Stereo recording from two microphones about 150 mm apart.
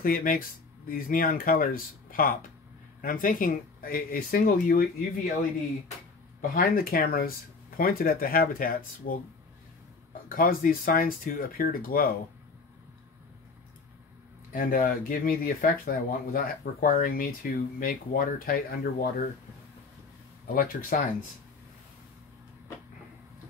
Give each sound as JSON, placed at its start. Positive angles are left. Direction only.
{"t": 0.0, "sound": "speech", "side_deg": 70}
{"t": 6.5, "sound": "speech", "side_deg": 75}
{"t": 14.5, "sound": "speech", "side_deg": 70}
{"t": 20.5, "sound": "speech", "side_deg": 75}